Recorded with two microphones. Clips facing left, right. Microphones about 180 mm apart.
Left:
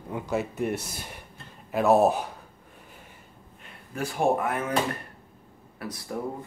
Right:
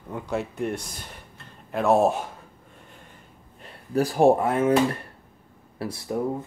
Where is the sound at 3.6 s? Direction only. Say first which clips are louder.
Right 9 dB; 35° right (ahead or behind).